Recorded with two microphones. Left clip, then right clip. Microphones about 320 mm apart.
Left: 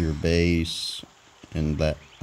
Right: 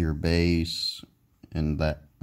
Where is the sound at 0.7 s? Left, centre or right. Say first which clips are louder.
Even; right.